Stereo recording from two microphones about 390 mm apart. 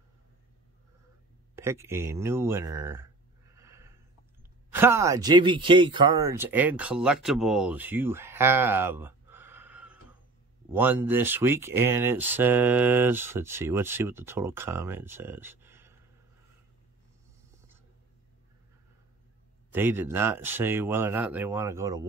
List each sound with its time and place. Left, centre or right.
1.5 s speech: centre
3.5 s a sound: centre
4.7 s speech: centre
19.7 s speech: centre